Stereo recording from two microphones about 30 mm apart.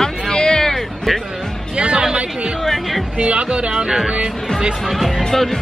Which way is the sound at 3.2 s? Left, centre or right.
Right.